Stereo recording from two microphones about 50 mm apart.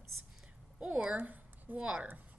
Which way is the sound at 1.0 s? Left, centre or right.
Right.